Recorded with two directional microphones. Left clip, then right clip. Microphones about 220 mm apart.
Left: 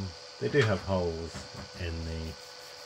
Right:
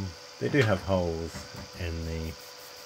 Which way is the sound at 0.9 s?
20° right (ahead or behind).